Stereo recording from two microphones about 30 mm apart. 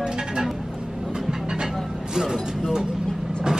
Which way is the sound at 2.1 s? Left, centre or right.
Centre.